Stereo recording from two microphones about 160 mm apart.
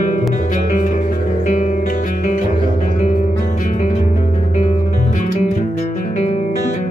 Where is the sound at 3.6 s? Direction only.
55° left (ahead or behind).